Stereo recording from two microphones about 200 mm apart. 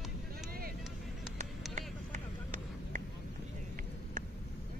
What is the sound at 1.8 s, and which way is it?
Vehicle, 40° right (ahead or behind).